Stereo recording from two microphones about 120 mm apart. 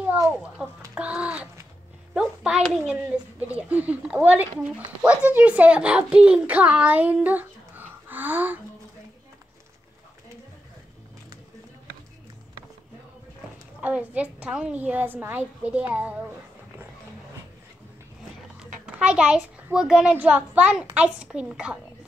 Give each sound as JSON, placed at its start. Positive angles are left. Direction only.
{"t": 0.3, "sound": "a woman's voice", "side_deg": -10}
{"t": 0.9, "sound": "a sound", "side_deg": -10}
{"t": 2.1, "sound": "a child's voice", "side_deg": -5}
{"t": 13.7, "sound": "a woman's voice", "side_deg": -10}
{"t": 18.6, "sound": "a child's voice", "side_deg": -5}